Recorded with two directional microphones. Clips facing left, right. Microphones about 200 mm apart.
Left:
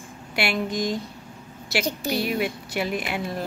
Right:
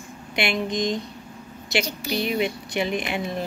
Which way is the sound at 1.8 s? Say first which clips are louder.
Left 2 dB; 50° left (ahead or behind).